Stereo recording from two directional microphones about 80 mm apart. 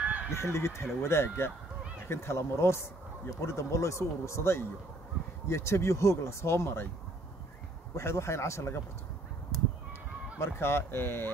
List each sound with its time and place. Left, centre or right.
0.3 s speech: left
7.9 s speech: left
10.4 s speech: left